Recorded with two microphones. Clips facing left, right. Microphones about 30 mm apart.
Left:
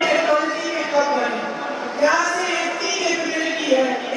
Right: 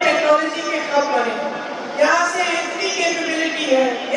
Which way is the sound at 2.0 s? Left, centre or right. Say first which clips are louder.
Right 2 dB; right.